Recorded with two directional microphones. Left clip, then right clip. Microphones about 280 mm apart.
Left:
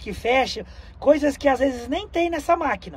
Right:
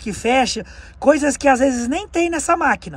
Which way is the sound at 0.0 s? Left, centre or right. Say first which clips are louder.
Right 4 dB; right.